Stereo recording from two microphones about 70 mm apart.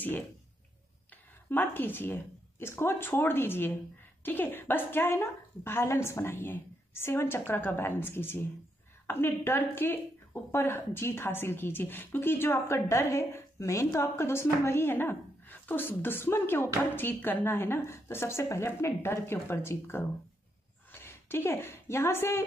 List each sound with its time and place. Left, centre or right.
1.1 s a woman's voice: left